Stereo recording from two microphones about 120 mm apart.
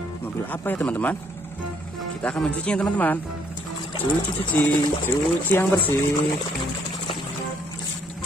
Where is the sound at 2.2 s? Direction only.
10° left (ahead or behind).